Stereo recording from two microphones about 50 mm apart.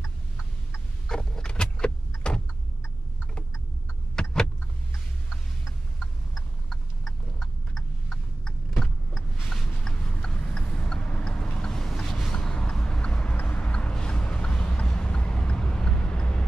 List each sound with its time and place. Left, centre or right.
1.0 s vehicle: centre
4.1 s vehicle: centre
5.9 s tick-tock: centre
8.7 s vehicle: centre
9.8 s horse: centre
12.3 s vehicle: centre